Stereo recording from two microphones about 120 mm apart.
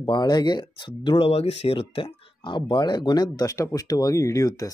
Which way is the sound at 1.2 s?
55° left (ahead or behind).